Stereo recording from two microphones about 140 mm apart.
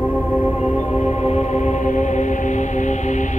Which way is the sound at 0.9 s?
55° left (ahead or behind).